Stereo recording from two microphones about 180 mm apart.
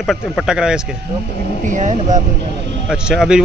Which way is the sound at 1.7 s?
45° right (ahead or behind).